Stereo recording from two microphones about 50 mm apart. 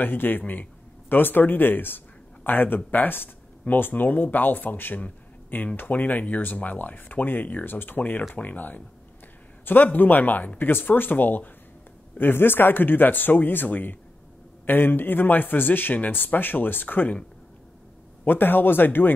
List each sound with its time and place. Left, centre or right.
0.0 s speech: left
5.0 s a sound: left
5.8 s speech: left
18.2 s speech: left